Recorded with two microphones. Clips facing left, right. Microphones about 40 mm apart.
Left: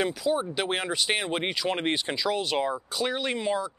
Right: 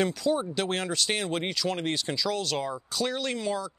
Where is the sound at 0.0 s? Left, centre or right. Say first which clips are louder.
Even; centre.